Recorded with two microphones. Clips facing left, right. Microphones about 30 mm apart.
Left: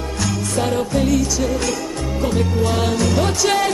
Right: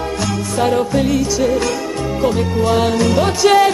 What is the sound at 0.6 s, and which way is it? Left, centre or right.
Music, centre.